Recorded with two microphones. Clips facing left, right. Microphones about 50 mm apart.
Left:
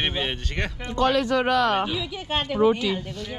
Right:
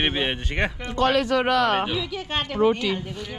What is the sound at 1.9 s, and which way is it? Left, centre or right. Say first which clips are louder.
Speech: even; centre.